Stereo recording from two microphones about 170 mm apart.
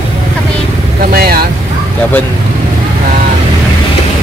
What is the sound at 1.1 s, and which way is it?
Speech, 65° right (ahead or behind).